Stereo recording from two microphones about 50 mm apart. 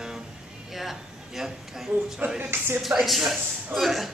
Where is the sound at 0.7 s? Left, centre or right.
Centre.